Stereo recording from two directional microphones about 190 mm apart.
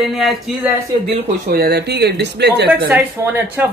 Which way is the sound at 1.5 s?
55° right (ahead or behind).